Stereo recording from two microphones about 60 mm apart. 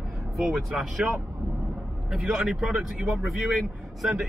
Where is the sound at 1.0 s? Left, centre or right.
Centre.